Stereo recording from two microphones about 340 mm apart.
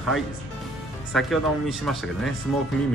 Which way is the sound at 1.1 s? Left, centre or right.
Centre.